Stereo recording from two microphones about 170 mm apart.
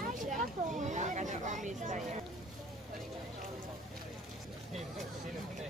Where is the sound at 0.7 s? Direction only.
45° right (ahead or behind).